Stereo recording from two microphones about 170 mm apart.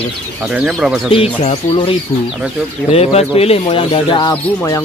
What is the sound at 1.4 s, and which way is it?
Speech, 35° left (ahead or behind).